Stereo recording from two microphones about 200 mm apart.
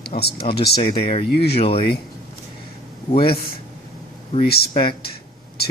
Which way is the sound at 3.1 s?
30° left (ahead or behind).